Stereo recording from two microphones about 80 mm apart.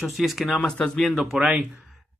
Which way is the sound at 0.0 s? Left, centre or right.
Centre.